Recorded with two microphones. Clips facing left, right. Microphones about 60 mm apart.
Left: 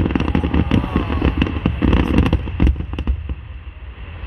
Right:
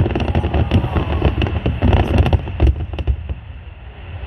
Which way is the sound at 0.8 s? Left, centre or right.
Centre.